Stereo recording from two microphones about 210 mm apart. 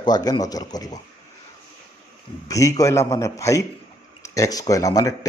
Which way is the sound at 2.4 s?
15° left (ahead or behind).